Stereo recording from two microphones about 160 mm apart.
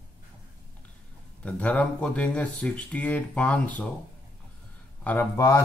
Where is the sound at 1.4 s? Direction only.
10° left (ahead or behind).